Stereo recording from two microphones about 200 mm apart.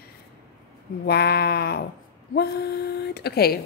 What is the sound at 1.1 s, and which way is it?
A woman's voice, 50° left (ahead or behind).